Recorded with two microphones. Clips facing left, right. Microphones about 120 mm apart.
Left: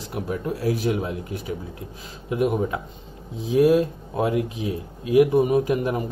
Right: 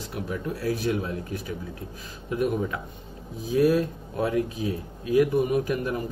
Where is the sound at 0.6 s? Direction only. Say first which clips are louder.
Left 2 dB; 20° left (ahead or behind).